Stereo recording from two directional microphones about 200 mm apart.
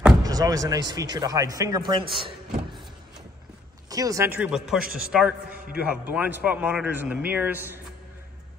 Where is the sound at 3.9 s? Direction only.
15° right (ahead or behind).